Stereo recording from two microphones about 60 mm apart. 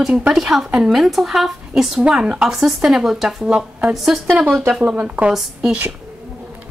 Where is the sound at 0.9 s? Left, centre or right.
Centre.